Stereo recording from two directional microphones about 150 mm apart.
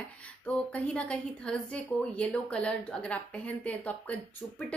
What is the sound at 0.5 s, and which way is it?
A woman's voice, 5° left (ahead or behind).